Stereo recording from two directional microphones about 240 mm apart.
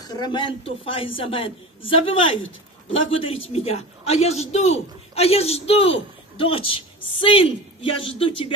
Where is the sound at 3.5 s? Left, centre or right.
Left.